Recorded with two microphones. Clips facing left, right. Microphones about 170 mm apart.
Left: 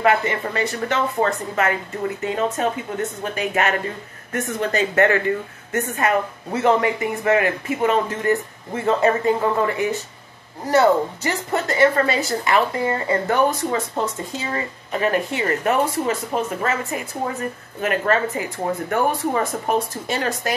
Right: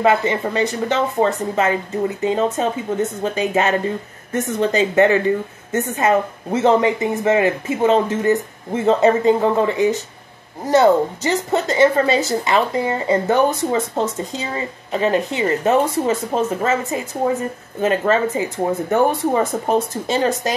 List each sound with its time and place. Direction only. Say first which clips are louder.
0.0 s a woman's voice: right 3 dB; 20° right (ahead or behind)